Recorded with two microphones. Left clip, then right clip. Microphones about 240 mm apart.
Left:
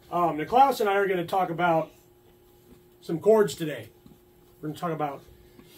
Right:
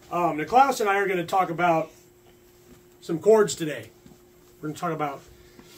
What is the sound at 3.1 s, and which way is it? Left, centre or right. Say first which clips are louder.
Speech: right 2 dB; centre.